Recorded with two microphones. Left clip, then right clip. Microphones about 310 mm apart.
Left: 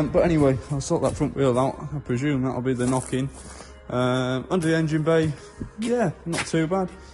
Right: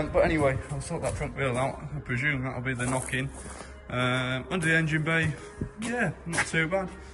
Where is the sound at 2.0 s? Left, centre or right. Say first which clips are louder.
Left 3 dB; centre.